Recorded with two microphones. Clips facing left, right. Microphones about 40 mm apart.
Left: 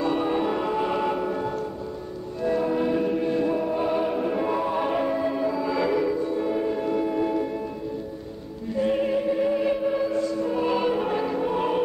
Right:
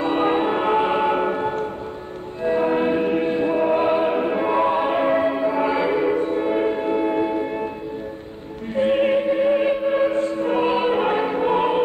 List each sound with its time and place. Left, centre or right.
0.0 s music: right
2.4 s choir: right
5.1 s music: right
6.1 s music: right
8.7 s choir: right